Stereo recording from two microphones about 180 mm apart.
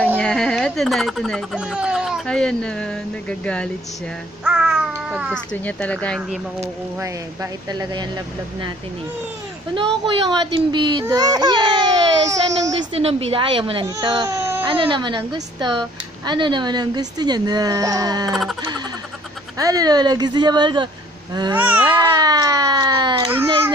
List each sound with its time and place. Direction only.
0.2 s speech: 5° left (ahead or behind)
4.5 s a sound: 5° right (ahead or behind)
5.7 s speech: 5° left (ahead or behind)
7.7 s speech: 25° right (ahead or behind)
10.4 s speech: 25° right (ahead or behind)
12.9 s speech: 30° right (ahead or behind); by 14.6 s 15° right (ahead or behind)
14.7 s speech: 30° right (ahead or behind)
19.6 s speech: 20° right (ahead or behind)
21.5 s babbling: 10° right (ahead or behind)
21.8 s speech: 20° right (ahead or behind)